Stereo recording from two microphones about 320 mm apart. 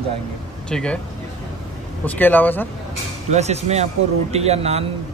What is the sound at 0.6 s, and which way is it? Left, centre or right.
Speech, centre.